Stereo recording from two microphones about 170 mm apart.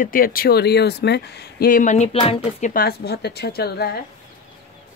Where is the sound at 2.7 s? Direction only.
65° left (ahead or behind).